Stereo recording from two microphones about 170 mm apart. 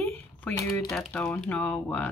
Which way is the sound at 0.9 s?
5° left (ahead or behind).